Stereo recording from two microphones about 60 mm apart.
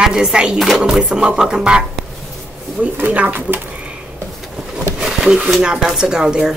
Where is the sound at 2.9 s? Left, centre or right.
Right.